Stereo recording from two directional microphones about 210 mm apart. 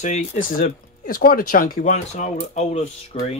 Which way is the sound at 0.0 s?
35° left (ahead or behind).